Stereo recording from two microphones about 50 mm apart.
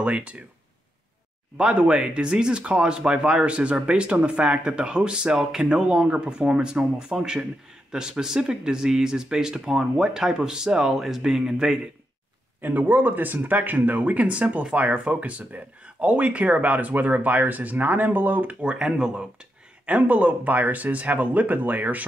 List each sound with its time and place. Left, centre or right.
0.0 s speech: right
1.6 s speech: right
12.6 s speech: right; by 19.2 s centre
19.9 s speech: right